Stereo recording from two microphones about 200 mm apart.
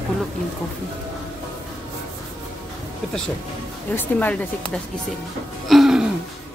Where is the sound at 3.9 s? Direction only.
10° left (ahead or behind).